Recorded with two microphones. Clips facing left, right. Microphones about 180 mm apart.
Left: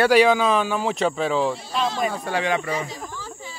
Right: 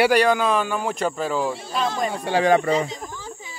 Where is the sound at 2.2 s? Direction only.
35° right (ahead or behind).